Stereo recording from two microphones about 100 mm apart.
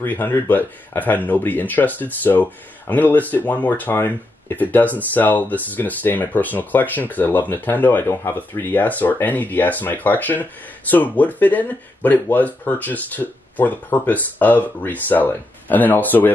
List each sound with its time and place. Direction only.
0.0 s speech: 20° left (ahead or behind)